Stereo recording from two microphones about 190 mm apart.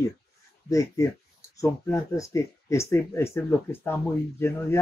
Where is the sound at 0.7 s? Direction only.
15° left (ahead or behind).